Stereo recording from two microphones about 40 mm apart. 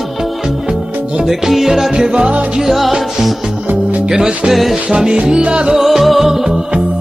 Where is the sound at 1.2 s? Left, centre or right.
Centre.